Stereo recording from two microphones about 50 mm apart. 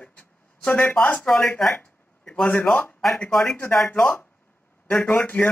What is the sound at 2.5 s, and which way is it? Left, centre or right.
Speech, left.